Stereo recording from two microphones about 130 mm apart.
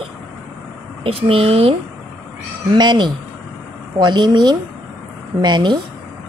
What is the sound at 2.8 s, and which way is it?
Speech, 35° right (ahead or behind).